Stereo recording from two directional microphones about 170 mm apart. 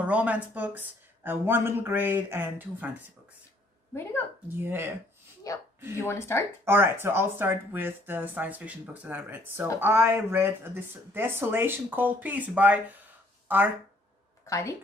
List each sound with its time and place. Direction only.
0.0 s speech: 10° right (ahead or behind)
4.6 s speech: 15° right (ahead or behind)
5.5 s speech: 20° left (ahead or behind)
6.6 s speech: 15° right (ahead or behind)
14.4 s a sound: 20° left (ahead or behind)